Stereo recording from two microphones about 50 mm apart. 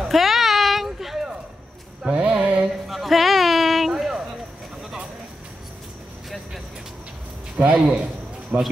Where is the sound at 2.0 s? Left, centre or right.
Centre.